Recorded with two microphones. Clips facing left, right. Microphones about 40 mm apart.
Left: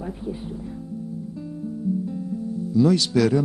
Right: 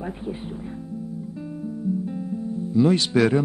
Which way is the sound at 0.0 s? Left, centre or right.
Right.